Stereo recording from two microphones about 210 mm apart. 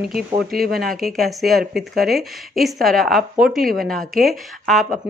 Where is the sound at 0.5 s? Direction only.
45° right (ahead or behind).